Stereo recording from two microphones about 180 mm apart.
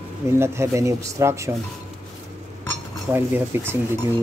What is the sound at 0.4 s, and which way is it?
Speech, 15° right (ahead or behind).